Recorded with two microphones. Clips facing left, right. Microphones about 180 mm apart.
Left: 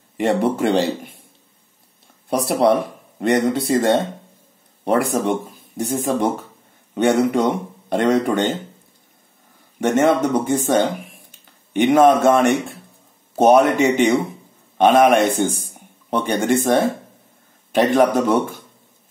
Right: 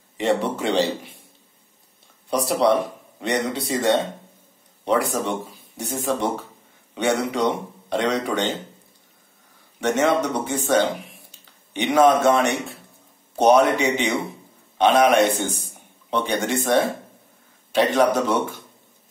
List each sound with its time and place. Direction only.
0.4 s speech: 50° left (ahead or behind)
2.2 s speech: 55° left (ahead or behind)
9.8 s a man's voice: 50° left (ahead or behind)